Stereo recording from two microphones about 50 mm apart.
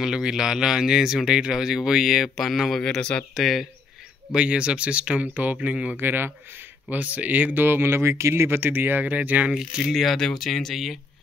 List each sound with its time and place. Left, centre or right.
0.0 s speech: centre
3.0 s speech: centre
3.3 s speech: centre
4.3 s speech: centre
5.9 s speech: right
6.9 s speech: right
8.5 s speech: right
9.5 s speech: centre
9.8 s speech: centre